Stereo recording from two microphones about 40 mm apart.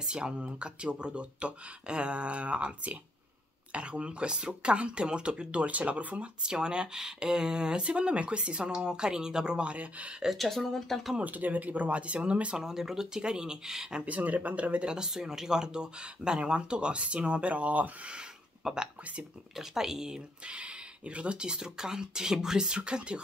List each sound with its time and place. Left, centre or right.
0.0 s speech: right
6.4 s speech: right
10.3 s speech: centre
11.2 s speech: right
12.5 s speech: centre
14.0 s speech: right
14.9 s speech: centre; by 18.1 s right
18.1 s a sound: centre
19.5 s speech: centre